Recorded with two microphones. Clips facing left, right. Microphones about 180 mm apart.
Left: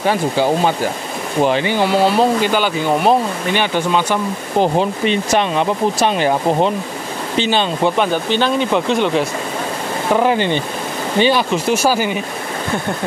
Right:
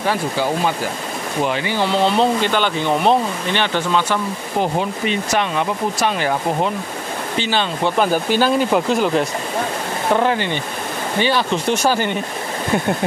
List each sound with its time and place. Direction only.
1.4 s speech: 30° left (ahead or behind)
1.7 s speech: 10° left (ahead or behind)
4.6 s speech: 30° left (ahead or behind)
8.0 s speech: 5° right (ahead or behind)
11.1 s speech: 20° left (ahead or behind)
11.5 s speech: 5° left (ahead or behind)